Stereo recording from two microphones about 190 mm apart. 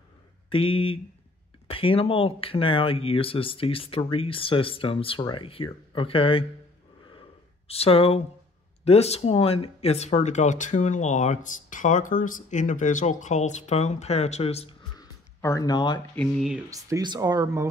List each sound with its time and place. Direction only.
0.5 s speech: 30° left (ahead or behind)
7.1 s a sound: 30° left (ahead or behind)
8.8 s speech: 35° left (ahead or behind)
15.0 s a sound: 20° left (ahead or behind)
16.2 s speech: centre (ahead or behind)
16.7 s speech: 20° right (ahead or behind)